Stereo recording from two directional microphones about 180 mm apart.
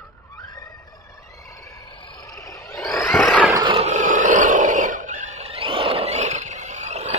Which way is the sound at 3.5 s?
25° right (ahead or behind).